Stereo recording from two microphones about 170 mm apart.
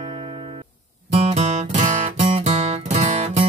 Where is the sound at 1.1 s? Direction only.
40° right (ahead or behind).